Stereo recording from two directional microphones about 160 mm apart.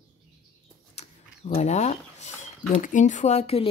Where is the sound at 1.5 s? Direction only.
45° left (ahead or behind).